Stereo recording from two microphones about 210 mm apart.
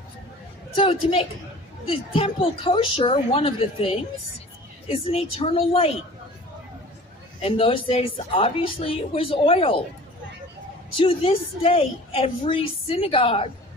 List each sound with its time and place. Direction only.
0.7 s a woman's voice: 25° left (ahead or behind)
7.4 s a woman's voice: 25° left (ahead or behind)
11.0 s a woman's voice: 25° left (ahead or behind)